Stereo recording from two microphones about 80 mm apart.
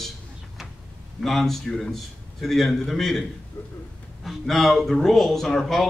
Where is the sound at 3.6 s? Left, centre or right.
Left.